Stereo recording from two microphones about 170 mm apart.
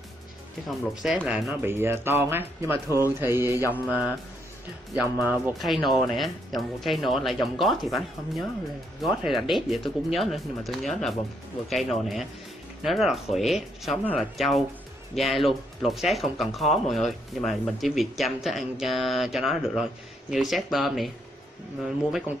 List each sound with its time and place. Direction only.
0.7 s speech: 5° right (ahead or behind)
3.8 s speech: 15° left (ahead or behind)
5.9 s speech: centre (ahead or behind)